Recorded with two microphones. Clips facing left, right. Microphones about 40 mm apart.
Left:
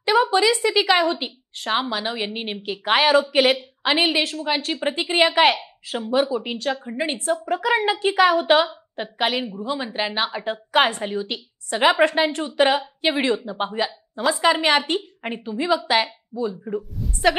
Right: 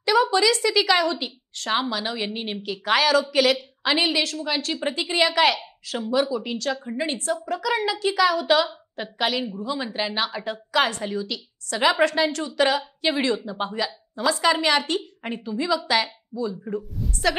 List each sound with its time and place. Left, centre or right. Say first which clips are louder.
0.0 s a woman's voice: left 1 dB; left
8.9 s a woman's voice: left 2 dB; left